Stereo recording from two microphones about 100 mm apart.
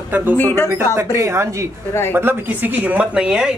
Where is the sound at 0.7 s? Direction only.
25° right (ahead or behind).